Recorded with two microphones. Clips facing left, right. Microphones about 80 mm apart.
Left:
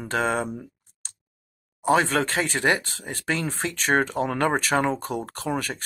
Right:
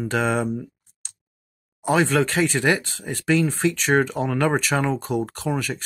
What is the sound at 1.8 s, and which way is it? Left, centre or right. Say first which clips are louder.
Speech: right 1 dB; left.